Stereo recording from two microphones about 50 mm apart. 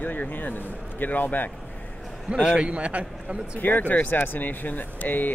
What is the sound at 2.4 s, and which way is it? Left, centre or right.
Speech, right.